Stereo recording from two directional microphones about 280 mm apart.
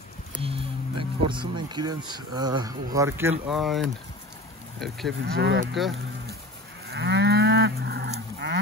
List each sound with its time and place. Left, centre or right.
0.4 s a sound: centre
1.2 s speech: centre
4.7 s cattle: centre
5.2 s cattle: right
6.9 s cattle: right